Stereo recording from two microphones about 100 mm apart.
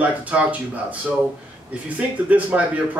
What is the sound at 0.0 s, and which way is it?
Speech, 15° right (ahead or behind).